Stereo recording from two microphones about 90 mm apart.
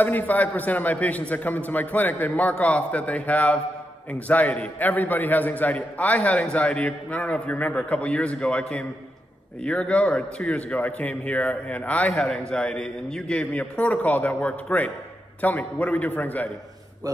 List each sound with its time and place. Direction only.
0.0 s a man's voice: 20° left (ahead or behind)